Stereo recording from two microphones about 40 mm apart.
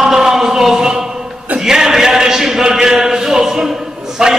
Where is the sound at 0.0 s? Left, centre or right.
Centre.